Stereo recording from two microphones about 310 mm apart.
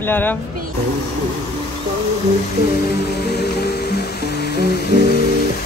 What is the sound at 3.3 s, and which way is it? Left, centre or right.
Music, left.